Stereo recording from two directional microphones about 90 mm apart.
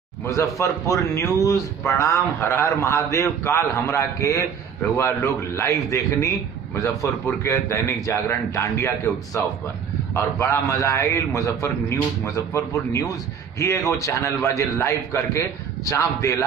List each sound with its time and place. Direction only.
0.3 s a man's voice: 35° left (ahead or behind)
13.6 s a man's voice: 35° left (ahead or behind)